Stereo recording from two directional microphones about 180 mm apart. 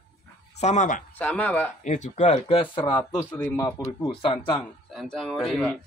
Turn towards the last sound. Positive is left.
turn(degrees=0)  # may be behind; listen again after turning